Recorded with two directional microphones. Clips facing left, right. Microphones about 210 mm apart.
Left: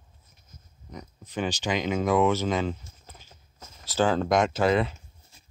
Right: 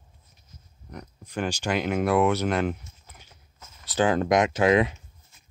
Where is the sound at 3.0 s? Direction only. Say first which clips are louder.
Left 2 dB; 35° left (ahead or behind).